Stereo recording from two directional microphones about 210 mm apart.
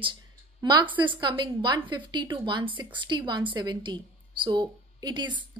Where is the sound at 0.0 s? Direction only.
20° right (ahead or behind).